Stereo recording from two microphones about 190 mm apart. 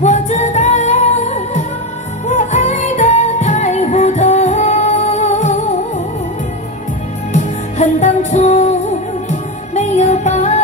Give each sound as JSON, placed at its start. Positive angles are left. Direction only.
{"t": 0.0, "sound": "music", "side_deg": 40}
{"t": 7.3, "sound": "music", "side_deg": 40}